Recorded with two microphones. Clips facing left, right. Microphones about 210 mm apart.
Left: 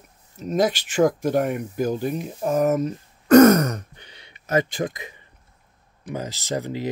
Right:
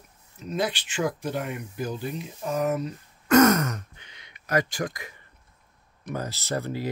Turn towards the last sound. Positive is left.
turn(degrees=15)  # may be behind; listen again after turning